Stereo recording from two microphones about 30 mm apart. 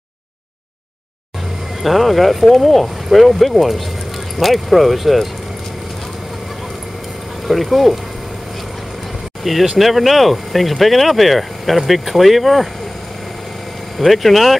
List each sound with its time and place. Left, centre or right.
1.8 s speech: centre
7.4 s speech: centre
9.4 s speech: centre
13.9 s speech: centre